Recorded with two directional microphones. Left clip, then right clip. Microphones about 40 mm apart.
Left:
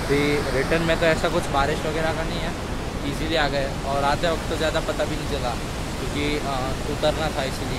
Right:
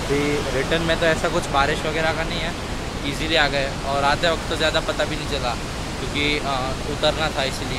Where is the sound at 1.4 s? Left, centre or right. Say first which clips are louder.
Right 2 dB; centre.